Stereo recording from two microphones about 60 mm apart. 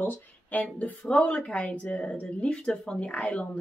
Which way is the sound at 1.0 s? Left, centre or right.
Centre.